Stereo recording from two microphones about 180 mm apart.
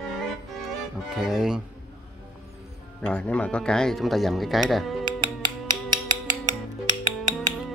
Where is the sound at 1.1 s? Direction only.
Centre (ahead or behind).